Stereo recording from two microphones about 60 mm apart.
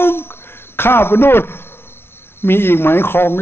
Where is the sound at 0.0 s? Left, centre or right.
Left.